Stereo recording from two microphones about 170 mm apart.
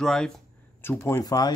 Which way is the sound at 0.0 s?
5° left (ahead or behind).